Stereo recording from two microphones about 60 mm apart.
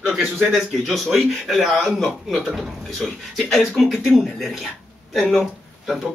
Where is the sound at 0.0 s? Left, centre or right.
Centre.